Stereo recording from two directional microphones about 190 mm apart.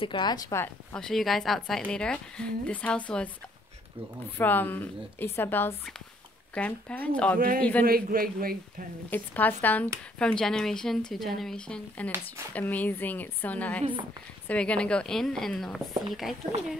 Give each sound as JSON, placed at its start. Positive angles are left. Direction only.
{"t": 0.0, "sound": "speech", "side_deg": 25}
{"t": 0.9, "sound": "a woman's voice", "side_deg": 0}
{"t": 4.4, "sound": "a woman's voice", "side_deg": 10}
{"t": 7.3, "sound": "a man's voice", "side_deg": -50}
{"t": 9.1, "sound": "a woman's voice", "side_deg": 10}